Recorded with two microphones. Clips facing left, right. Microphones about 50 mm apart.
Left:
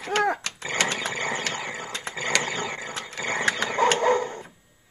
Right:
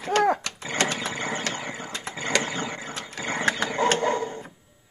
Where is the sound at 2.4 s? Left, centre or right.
Left.